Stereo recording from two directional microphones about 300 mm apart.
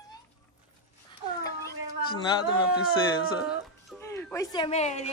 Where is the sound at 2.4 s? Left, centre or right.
Centre.